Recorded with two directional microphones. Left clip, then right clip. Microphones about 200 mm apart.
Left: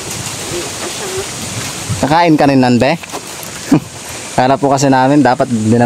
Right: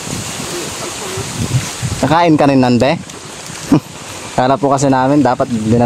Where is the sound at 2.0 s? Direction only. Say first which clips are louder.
Left 1 dB; 5° left (ahead or behind).